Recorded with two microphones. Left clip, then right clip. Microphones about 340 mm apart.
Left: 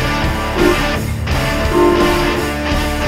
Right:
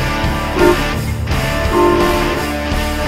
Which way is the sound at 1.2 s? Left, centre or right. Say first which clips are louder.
Even; centre.